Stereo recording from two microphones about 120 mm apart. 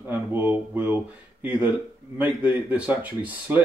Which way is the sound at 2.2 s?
15° right (ahead or behind).